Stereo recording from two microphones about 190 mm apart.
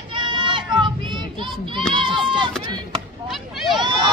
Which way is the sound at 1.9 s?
25° right (ahead or behind).